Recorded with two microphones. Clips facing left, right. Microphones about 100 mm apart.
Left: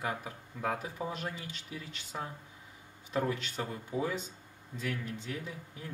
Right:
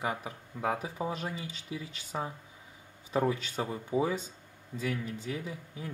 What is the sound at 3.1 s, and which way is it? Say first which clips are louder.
Speech: right 3 dB; 15° right (ahead or behind).